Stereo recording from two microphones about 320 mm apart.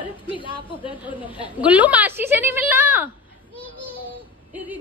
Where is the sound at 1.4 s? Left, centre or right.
Centre.